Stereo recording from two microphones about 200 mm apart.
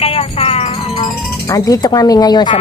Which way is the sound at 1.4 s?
15° left (ahead or behind).